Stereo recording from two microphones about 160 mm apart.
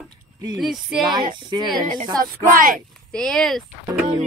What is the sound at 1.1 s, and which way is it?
Speech, 30° right (ahead or behind).